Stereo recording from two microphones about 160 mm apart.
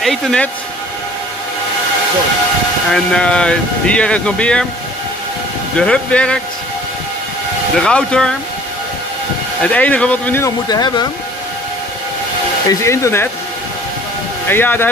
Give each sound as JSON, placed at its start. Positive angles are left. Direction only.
{"t": 0.0, "sound": "speech", "side_deg": 5}
{"t": 2.9, "sound": "speech", "side_deg": 5}
{"t": 5.8, "sound": "speech", "side_deg": 5}
{"t": 7.8, "sound": "speech", "side_deg": 5}
{"t": 9.6, "sound": "speech", "side_deg": 10}
{"t": 10.7, "sound": "speech", "side_deg": 25}
{"t": 12.6, "sound": "speech", "side_deg": 20}
{"t": 14.5, "sound": "speech", "side_deg": 15}